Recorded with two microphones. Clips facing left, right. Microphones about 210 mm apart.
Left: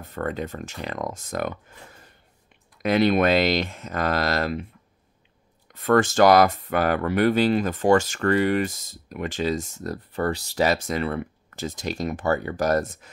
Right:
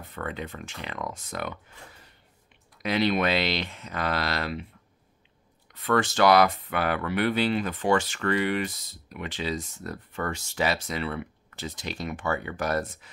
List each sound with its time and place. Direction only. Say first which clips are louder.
0.1 s speech: left 6 dB; 40° left (ahead or behind)
5.7 s speech: left 5 dB; 45° left (ahead or behind)